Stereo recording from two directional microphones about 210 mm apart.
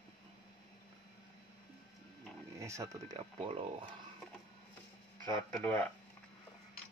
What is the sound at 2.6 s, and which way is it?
Speech, 15° right (ahead or behind).